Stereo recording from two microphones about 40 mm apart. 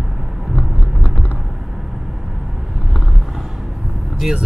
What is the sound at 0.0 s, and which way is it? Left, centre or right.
Vehicle, centre.